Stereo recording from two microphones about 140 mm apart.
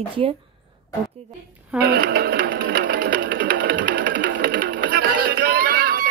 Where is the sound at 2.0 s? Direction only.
90° right.